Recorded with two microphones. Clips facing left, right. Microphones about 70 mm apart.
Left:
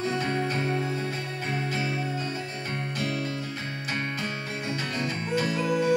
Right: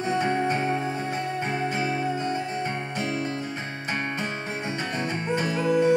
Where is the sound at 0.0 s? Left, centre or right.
Right.